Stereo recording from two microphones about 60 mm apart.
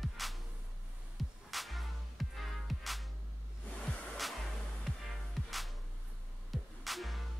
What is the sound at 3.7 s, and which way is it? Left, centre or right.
Music, centre.